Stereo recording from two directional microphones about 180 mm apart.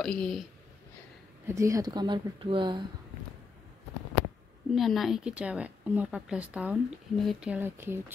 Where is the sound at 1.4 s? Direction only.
15° right (ahead or behind).